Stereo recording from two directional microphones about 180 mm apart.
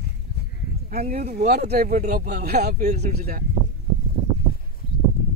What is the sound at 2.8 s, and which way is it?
Speech, 40° right (ahead or behind).